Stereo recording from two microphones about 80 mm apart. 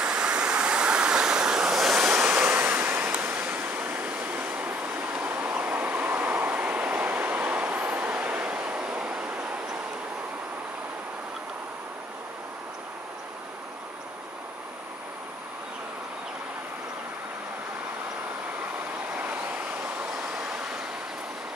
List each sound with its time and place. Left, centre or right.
0.0 s waves: centre
2.0 s waves: right
19.1 s waves: centre